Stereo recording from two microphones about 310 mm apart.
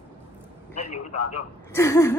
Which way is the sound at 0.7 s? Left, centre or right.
Left.